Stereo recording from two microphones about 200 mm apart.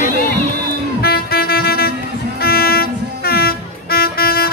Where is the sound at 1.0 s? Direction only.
50° left (ahead or behind).